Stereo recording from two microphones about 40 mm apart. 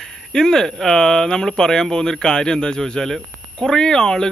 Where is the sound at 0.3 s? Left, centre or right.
Centre.